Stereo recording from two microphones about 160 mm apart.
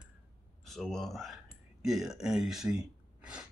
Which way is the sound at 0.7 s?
Centre (ahead or behind).